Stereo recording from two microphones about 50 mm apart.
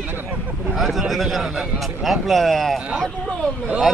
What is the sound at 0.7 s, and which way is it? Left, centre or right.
Speech, centre.